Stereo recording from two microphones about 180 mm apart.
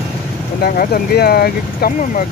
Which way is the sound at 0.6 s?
60° left (ahead or behind).